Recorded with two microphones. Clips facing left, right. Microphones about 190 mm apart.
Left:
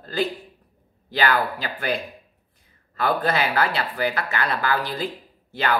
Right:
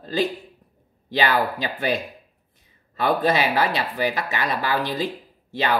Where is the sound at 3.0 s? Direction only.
20° right (ahead or behind).